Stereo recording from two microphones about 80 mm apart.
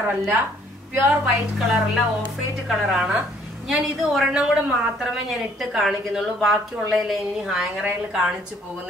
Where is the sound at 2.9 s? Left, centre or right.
Centre.